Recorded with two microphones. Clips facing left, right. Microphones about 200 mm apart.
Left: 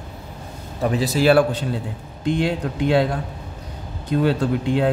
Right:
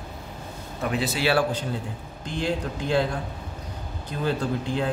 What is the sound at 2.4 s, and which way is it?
Speech, 65° left (ahead or behind).